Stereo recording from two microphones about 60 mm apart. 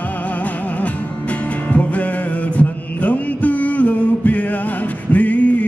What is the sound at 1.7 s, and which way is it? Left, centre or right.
Music, left.